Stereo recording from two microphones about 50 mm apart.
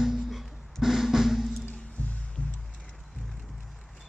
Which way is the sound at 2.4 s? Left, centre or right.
Left.